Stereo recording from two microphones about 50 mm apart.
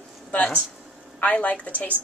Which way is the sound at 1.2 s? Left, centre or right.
Left.